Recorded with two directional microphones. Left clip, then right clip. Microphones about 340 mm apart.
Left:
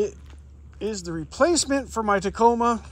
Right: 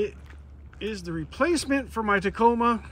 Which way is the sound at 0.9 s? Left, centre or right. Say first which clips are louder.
Left 2 dB; centre.